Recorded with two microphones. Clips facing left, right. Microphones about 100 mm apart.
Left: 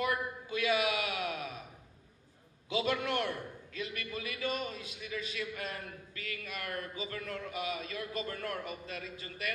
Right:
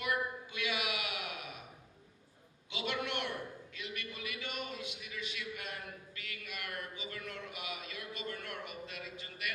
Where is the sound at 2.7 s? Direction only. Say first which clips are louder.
Left 6 dB; 40° left (ahead or behind).